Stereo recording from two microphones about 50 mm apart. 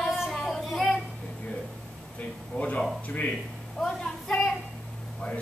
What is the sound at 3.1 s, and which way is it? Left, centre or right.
Speech, left.